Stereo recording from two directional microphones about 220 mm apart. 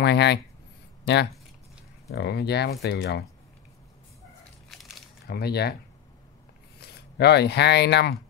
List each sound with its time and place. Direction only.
0.0 s speech: 50° left (ahead or behind)
5.3 s speech: 45° left (ahead or behind)
6.8 s speech: 50° left (ahead or behind)